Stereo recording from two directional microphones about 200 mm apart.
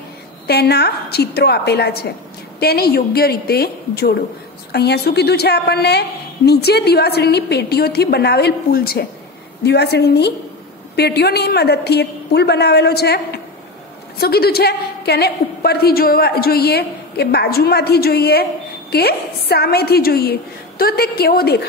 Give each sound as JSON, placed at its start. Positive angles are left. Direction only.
{"t": 0.5, "sound": "a woman's voice", "side_deg": 55}